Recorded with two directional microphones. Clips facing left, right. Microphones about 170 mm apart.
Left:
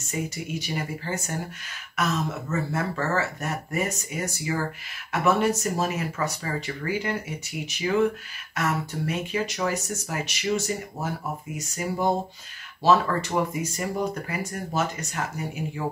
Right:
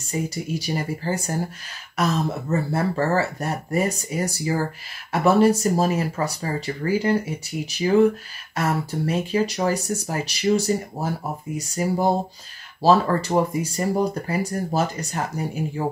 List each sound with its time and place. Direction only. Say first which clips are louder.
0.0 s speech: right 4 dB; 35° right (ahead or behind)